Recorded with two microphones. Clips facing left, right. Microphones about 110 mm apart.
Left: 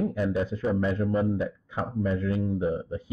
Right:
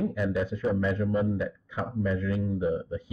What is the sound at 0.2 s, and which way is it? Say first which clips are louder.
A man's voice: left 1 dB; 30° left (ahead or behind).